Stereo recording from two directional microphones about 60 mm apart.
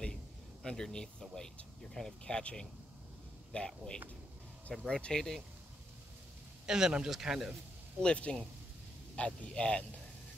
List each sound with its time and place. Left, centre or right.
0.0 s a sound: centre
2.0 s speech: centre
6.6 s a man's voice: centre
8.0 s a man's voice: centre